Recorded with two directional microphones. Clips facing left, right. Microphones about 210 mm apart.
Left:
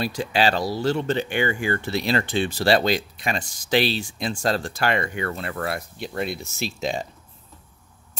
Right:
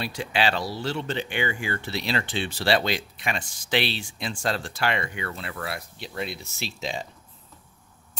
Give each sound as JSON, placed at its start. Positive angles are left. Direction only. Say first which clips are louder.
{"t": 0.0, "sound": "speech", "louder": "left 4 dB", "side_deg": 40}